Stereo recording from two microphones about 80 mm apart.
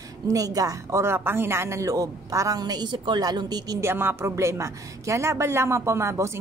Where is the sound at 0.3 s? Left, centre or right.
Right.